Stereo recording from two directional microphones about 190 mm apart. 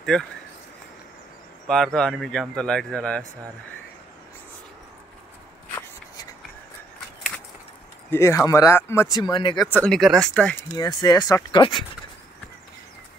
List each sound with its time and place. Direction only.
0.0 s speech: 5° left (ahead or behind)
1.7 s speech: centre (ahead or behind)
8.1 s speech: 15° left (ahead or behind)
9.7 s speech: 5° left (ahead or behind)
10.8 s speech: 20° left (ahead or behind)